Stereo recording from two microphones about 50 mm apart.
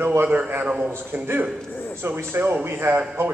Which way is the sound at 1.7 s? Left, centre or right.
Left.